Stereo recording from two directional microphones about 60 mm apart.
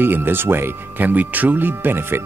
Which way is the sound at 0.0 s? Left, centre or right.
Right.